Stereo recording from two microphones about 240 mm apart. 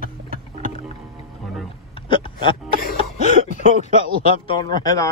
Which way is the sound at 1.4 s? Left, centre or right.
Centre.